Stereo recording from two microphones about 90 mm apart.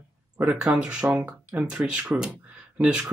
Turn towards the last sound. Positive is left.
turn(degrees=-10)  # may be behind; listen again after turning